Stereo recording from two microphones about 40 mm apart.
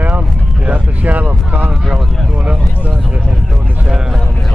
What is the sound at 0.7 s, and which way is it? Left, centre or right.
Vehicle, right.